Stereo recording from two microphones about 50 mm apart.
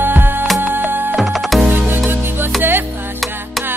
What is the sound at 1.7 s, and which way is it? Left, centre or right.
Music, right.